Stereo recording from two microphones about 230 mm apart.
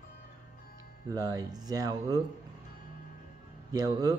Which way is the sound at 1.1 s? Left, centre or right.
Centre.